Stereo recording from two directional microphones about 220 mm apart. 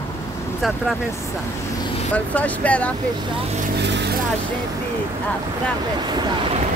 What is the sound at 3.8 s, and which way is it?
Vehicle, 50° right (ahead or behind).